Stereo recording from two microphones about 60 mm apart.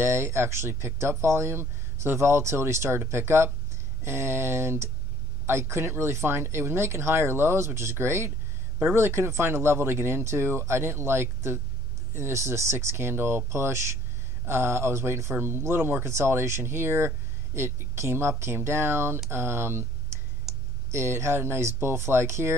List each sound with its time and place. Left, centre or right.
0.0 s speech: right
20.5 s clicking: centre
20.9 s speech: right